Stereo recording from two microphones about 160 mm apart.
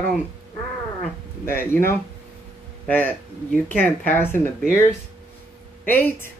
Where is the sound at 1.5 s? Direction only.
15° left (ahead or behind).